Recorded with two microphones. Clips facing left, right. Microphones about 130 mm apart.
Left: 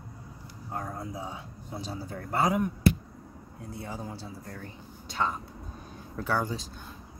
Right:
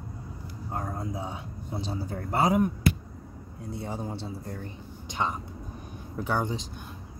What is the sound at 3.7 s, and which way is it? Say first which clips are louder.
A man's voice: right 4 dB; 25° right (ahead or behind).